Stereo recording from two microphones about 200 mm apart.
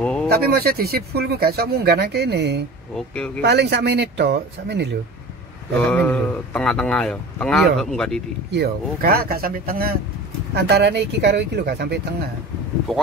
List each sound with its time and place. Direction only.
0.0 s a sound: 5° left (ahead or behind)
0.3 s speech: 50° right (ahead or behind)
5.8 s speech: 5° left (ahead or behind)
8.5 s speech: 55° right (ahead or behind)